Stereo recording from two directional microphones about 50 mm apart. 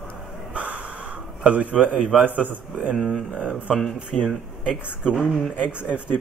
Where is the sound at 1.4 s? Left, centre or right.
Right.